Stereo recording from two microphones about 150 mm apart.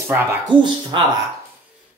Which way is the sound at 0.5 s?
30° right (ahead or behind).